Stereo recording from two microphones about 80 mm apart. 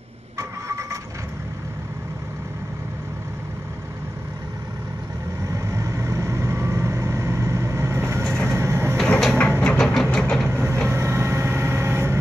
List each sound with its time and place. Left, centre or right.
0.4 s vehicle: right
5.5 s vehicle: right
8.2 s vehicle: centre
8.5 s vehicle: right
8.9 s a sound: centre
10.1 s vehicle: centre
10.5 s vehicle: right